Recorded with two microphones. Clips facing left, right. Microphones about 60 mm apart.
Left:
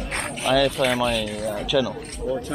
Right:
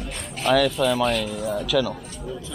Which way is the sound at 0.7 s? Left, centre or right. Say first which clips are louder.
Even; left.